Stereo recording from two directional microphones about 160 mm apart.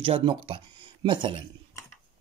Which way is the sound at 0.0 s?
35° right (ahead or behind).